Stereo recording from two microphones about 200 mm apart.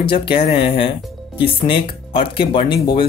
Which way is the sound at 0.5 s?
25° left (ahead or behind).